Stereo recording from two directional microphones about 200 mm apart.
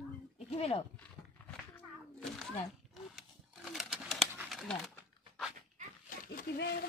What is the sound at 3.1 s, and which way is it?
Pigeon, centre (ahead or behind).